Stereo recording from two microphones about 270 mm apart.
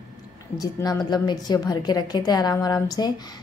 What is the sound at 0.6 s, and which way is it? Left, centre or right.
A woman's voice, centre.